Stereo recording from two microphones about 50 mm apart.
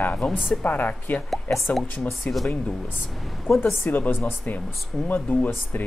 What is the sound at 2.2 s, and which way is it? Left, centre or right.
Speech, centre.